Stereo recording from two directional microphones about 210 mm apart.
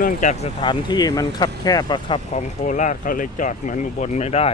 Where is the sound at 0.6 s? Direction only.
20° left (ahead or behind).